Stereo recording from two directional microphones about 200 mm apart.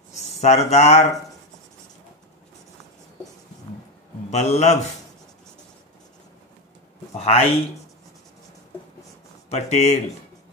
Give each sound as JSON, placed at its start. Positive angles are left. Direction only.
{"t": 0.2, "sound": "speech", "side_deg": 35}
{"t": 4.3, "sound": "a man's voice", "side_deg": 35}
{"t": 7.2, "sound": "a man's voice", "side_deg": 30}
{"t": 9.5, "sound": "a man's voice", "side_deg": 35}